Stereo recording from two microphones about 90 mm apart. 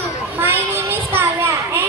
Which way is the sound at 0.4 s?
25° right (ahead or behind).